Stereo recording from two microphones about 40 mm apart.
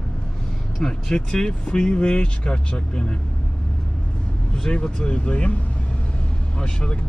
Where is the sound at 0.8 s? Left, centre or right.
Centre.